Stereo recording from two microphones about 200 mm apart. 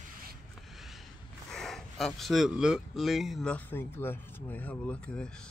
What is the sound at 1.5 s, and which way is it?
Speech, centre (ahead or behind).